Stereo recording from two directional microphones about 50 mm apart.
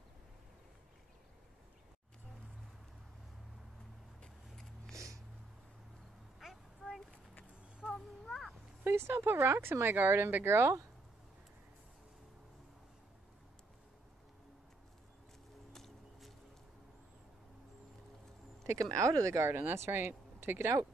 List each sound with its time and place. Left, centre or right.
4.9 s music: right
6.4 s a sound: centre
8.8 s a sound: right
9.2 s speech: right
10.0 s speech: right
15.7 s music: centre
18.6 s speech: right
19.5 s speech: right